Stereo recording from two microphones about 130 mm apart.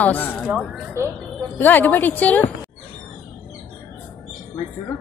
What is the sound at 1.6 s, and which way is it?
Speech, 15° left (ahead or behind).